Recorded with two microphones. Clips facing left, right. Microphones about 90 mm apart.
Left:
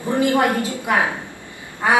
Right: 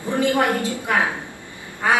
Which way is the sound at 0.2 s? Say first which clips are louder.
Left 1 dB; 20° left (ahead or behind).